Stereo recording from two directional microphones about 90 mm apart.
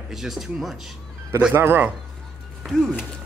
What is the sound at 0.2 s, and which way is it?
Speech, centre (ahead or behind).